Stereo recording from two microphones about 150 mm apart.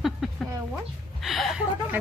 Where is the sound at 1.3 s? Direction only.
Centre (ahead or behind).